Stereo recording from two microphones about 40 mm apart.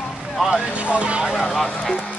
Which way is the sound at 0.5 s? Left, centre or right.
Right.